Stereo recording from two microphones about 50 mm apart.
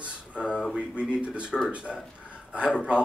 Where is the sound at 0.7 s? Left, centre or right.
Right.